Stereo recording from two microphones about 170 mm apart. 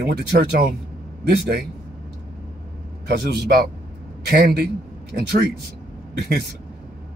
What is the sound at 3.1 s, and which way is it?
Speech, 75° right (ahead or behind).